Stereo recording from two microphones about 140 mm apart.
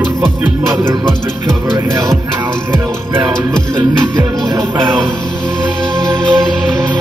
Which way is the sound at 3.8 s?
25° right (ahead or behind).